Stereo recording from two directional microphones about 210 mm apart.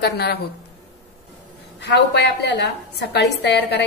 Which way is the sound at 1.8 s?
55° left (ahead or behind).